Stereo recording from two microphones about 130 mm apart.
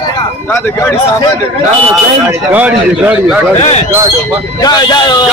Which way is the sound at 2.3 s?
10° right (ahead or behind).